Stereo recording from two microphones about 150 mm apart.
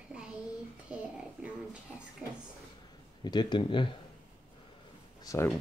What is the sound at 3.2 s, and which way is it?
Speech, 30° left (ahead or behind).